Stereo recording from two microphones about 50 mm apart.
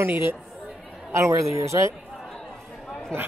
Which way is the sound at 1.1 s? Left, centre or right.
Right.